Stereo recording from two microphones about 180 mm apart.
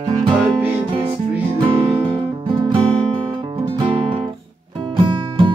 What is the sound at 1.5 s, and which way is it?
Music, 30° right (ahead or behind).